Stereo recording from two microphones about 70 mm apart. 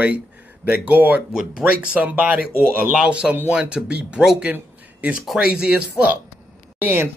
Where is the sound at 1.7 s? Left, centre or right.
Centre.